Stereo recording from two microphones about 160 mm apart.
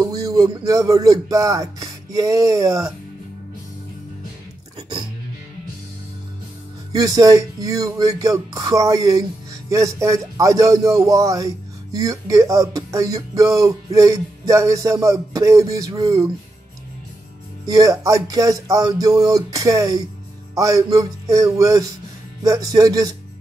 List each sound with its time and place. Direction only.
0.0 s music: 20° right (ahead or behind)
4.7 s music: 35° right (ahead or behind)
6.9 s speech: 25° right (ahead or behind)
17.6 s speech: 20° right (ahead or behind)